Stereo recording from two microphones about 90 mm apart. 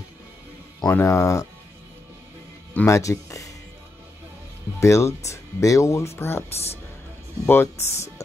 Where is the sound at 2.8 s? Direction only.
35° left (ahead or behind).